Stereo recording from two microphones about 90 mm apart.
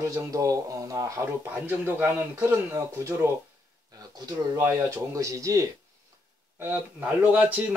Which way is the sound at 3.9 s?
45° right (ahead or behind).